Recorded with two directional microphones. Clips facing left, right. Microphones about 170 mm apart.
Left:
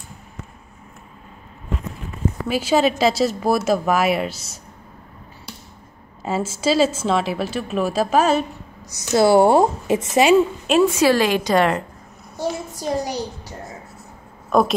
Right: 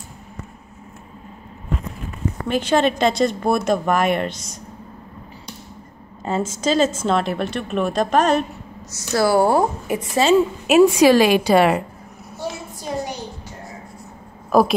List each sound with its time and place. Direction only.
2.4 s a woman's voice: 5° left (ahead or behind)
6.2 s a woman's voice: 5° left (ahead or behind)
8.9 s a woman's voice: 20° left (ahead or behind)
10.7 s a woman's voice: 15° right (ahead or behind)
12.4 s a sound: 40° left (ahead or behind)
14.5 s a woman's voice: 5° right (ahead or behind)